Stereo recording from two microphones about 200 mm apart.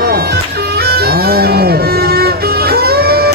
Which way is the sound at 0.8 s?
50° right (ahead or behind).